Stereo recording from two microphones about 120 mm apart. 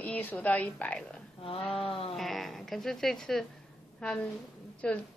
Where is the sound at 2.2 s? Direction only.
Centre (ahead or behind).